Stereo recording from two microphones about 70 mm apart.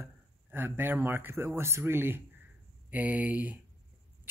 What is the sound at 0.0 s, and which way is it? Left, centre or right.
Speech, right.